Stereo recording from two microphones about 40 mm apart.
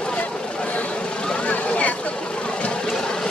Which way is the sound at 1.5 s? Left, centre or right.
Left.